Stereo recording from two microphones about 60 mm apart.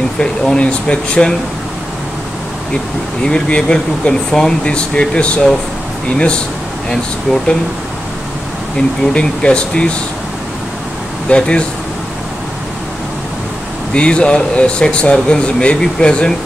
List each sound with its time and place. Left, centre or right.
0.2 s speech: centre
2.7 s speech: centre
8.7 s speech: centre
11.2 s speech: centre
13.9 s speech: centre